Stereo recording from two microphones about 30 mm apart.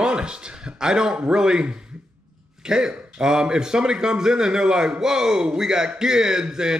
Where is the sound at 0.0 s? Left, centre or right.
Right.